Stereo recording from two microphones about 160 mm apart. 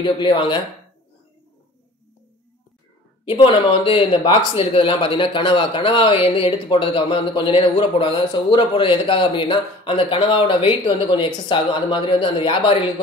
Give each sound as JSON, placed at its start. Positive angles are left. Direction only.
{"t": 0.0, "sound": "speech", "side_deg": 30}
{"t": 3.3, "sound": "speech", "side_deg": 35}